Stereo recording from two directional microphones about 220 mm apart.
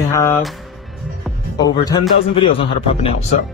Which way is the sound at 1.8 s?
20° left (ahead or behind).